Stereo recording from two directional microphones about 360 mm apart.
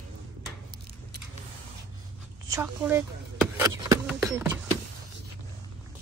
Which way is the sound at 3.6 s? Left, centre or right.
Centre.